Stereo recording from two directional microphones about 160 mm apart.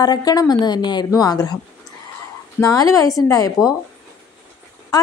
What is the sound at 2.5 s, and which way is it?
Speech, 20° left (ahead or behind).